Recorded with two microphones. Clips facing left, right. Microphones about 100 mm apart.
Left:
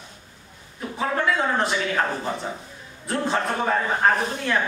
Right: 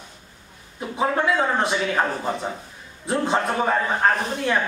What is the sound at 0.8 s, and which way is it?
Speech, 15° right (ahead or behind).